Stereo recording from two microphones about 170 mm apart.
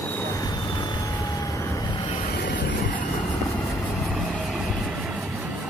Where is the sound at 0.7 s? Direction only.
25° left (ahead or behind).